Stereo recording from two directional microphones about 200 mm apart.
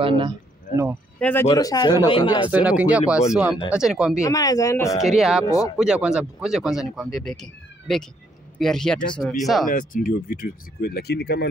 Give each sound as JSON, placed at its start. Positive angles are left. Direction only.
{"t": 0.0, "sound": "speech", "side_deg": -25}
{"t": 0.7, "sound": "speech", "side_deg": 45}
{"t": 1.2, "sound": "speech", "side_deg": 10}
{"t": 2.5, "sound": "speech", "side_deg": -5}
{"t": 4.2, "sound": "speech", "side_deg": 15}
{"t": 5.0, "sound": "speech", "side_deg": 0}
{"t": 5.4, "sound": "speech", "side_deg": 15}
{"t": 5.8, "sound": "speech", "side_deg": -5}
{"t": 9.7, "sound": "speech", "side_deg": 40}